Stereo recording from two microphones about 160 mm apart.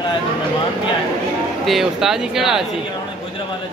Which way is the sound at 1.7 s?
Centre (ahead or behind).